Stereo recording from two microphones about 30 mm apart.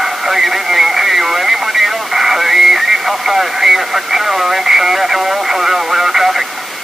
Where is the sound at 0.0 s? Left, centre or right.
Centre.